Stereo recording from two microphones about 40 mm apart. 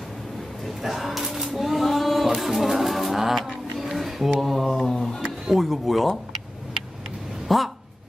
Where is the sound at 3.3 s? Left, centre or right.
Centre.